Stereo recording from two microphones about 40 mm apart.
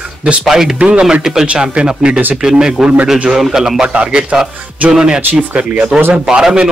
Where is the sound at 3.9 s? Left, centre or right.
Right.